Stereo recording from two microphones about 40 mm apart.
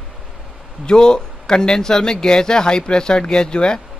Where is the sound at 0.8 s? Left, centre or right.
Left.